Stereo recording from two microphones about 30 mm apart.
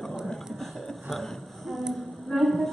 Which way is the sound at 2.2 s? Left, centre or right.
Centre.